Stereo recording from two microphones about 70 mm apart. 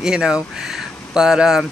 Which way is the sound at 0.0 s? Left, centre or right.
Centre.